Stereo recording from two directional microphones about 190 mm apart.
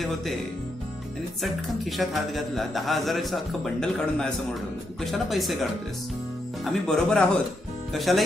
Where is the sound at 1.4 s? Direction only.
Centre (ahead or behind).